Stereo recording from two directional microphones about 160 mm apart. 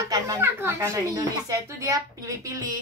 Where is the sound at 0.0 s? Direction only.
20° right (ahead or behind).